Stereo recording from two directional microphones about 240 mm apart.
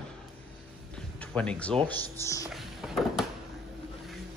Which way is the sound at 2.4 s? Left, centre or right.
Centre.